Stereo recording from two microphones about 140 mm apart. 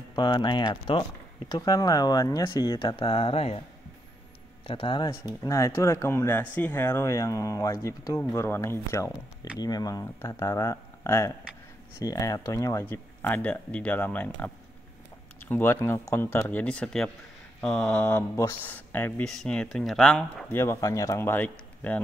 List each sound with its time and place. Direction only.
0.1 s speech: 30° left (ahead or behind)
4.6 s speech: 40° left (ahead or behind)
5.4 s speech: 20° left (ahead or behind); by 20.4 s 5° left (ahead or behind)
20.4 s speech: 15° left (ahead or behind)